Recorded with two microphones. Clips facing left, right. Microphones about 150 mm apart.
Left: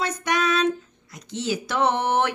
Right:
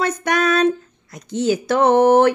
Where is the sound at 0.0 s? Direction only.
50° right (ahead or behind).